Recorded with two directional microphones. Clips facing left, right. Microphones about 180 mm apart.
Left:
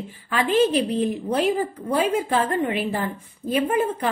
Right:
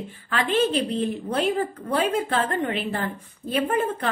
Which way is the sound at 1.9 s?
10° left (ahead or behind).